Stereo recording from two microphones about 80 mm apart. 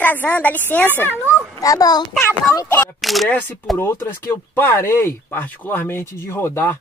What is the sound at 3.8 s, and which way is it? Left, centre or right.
Speech, left.